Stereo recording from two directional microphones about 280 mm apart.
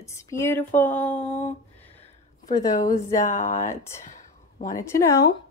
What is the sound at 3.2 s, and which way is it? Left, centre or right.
Speech, left.